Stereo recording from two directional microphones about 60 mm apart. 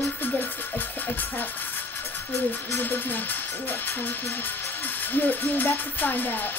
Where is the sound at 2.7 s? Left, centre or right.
Left.